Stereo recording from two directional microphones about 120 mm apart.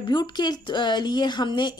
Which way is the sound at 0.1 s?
35° left (ahead or behind).